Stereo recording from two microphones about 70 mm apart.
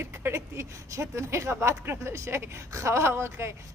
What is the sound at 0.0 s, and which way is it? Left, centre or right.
Speech, right.